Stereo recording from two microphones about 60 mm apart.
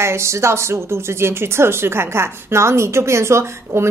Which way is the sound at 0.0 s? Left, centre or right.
Right.